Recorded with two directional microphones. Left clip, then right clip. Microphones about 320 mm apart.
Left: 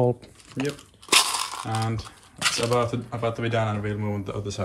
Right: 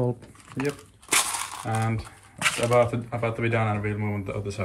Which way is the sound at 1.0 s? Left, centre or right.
Centre.